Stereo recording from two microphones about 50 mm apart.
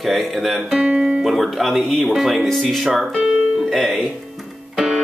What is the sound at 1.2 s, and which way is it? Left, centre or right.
Speech, centre.